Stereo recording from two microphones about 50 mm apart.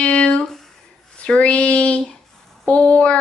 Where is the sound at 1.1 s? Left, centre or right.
Left.